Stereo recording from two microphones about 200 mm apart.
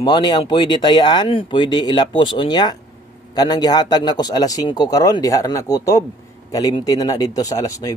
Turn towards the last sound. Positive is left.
turn(degrees=15)  # may be behind; listen again after turning